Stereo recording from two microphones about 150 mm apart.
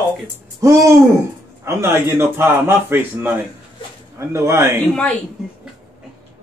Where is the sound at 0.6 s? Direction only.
20° right (ahead or behind).